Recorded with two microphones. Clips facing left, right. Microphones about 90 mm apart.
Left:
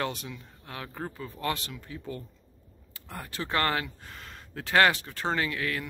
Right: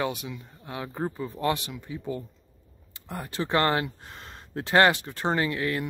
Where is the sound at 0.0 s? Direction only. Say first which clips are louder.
Right 3 dB; 10° right (ahead or behind).